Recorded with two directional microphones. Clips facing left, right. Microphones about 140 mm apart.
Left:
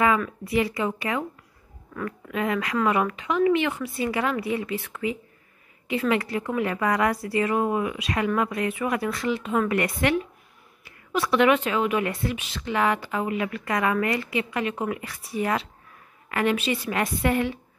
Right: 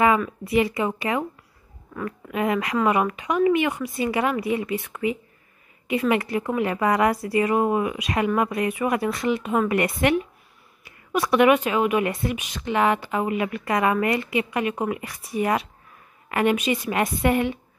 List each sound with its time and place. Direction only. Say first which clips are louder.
0.5 s a woman's voice: right 3 dB; 20° right (ahead or behind)
2.2 s a woman's voice: right 3 dB; 20° right (ahead or behind)